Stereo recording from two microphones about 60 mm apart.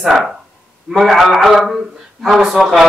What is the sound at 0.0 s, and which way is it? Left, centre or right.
Speech, centre.